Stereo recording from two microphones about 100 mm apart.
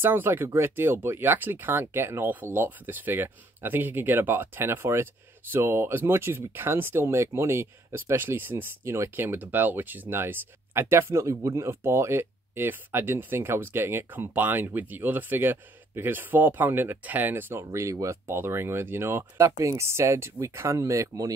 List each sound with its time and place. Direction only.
0.0 s speech: 20° right (ahead or behind)
17.6 s speech: 35° right (ahead or behind)